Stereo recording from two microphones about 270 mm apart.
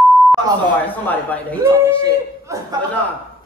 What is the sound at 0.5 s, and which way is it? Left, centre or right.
Speech, centre.